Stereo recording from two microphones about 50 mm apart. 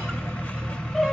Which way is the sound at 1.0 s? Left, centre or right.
Centre.